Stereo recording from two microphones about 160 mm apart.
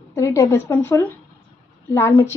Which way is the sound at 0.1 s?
20° left (ahead or behind).